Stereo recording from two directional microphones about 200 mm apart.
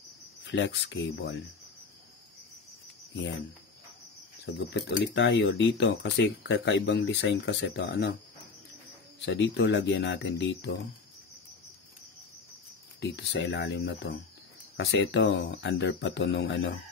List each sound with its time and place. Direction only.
0.4 s speech: 65° left (ahead or behind)
4.5 s speech: 60° left (ahead or behind)
9.2 s speech: 65° left (ahead or behind)
13.0 s speech: 60° left (ahead or behind)